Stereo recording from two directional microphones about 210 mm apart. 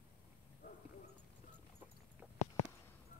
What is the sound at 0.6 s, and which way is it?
Clip-clop, 45° left (ahead or behind).